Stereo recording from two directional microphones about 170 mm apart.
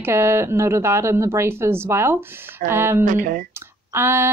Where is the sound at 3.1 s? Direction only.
50° right (ahead or behind).